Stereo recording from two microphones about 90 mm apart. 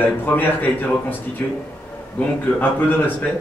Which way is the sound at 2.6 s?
20° left (ahead or behind).